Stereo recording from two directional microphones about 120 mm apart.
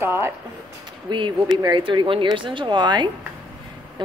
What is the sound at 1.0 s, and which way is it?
Speech, 40° right (ahead or behind).